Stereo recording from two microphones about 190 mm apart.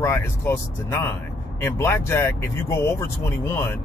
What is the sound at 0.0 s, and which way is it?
Speech, 15° left (ahead or behind).